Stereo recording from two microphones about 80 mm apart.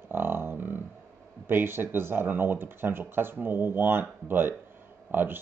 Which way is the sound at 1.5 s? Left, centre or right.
Right.